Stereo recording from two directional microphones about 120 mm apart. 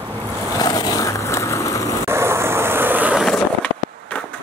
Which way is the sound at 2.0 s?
20° right (ahead or behind).